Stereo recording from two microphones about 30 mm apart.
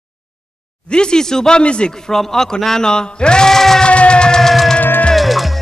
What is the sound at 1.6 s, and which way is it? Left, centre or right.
Music, left.